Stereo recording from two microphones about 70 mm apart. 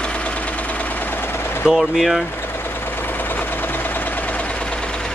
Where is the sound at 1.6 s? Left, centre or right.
Centre.